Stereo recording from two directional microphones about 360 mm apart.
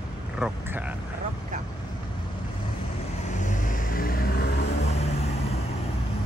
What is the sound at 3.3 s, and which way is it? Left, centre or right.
Vehicle, left.